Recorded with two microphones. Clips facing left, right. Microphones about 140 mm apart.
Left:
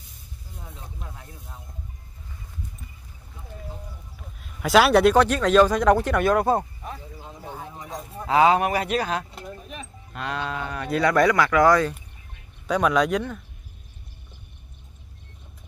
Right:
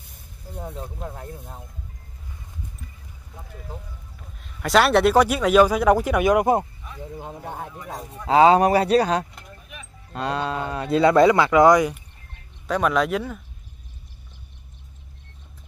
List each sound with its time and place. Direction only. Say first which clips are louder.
0.1 s speech: right 8 dB; 55° right (ahead or behind)
4.4 s speech: left 1 dB; centre (ahead or behind)
5.1 s speech: right 1 dB; 10° right (ahead or behind)
7.2 s a sound: right 4 dB; 55° right (ahead or behind)
8.3 s speech: right 4 dB; 30° right (ahead or behind)
9.3 s a sound: left 6 dB; 30° left (ahead or behind)
10.1 s speech: right 4 dB; 30° right (ahead or behind); by 12.0 s 15° right (ahead or behind)
12.6 s speech: even; centre (ahead or behind)